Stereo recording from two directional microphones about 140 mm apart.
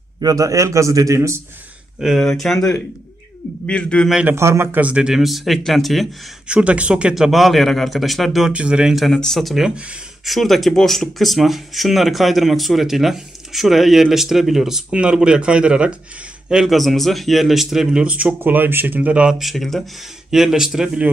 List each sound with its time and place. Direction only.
0.2 s a man's voice: 25° right (ahead or behind)
2.0 s a man's voice: centre (ahead or behind)
4.1 s speech: 10° right (ahead or behind)